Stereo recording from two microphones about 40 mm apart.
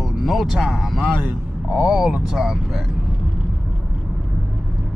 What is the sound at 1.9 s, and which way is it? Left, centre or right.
Speech, centre.